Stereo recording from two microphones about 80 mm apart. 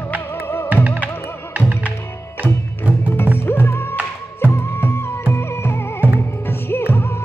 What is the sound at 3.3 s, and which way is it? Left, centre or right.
Music, left.